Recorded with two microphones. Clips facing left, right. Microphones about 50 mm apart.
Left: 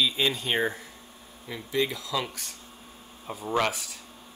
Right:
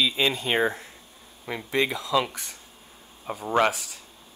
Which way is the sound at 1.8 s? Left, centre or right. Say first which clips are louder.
Right 6 dB; right.